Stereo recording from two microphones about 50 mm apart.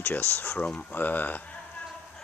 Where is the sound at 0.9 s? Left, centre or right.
Left.